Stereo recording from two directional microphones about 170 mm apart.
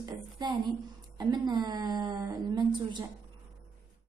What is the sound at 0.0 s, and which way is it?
A woman's voice, 25° right (ahead or behind).